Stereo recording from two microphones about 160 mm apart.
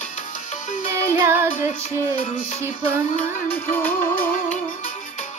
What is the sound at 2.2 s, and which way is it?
Music, 45° left (ahead or behind).